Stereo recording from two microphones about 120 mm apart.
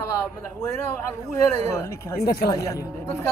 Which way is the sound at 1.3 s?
25° left (ahead or behind).